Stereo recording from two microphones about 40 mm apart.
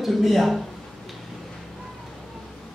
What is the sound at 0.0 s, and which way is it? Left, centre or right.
Speech, centre.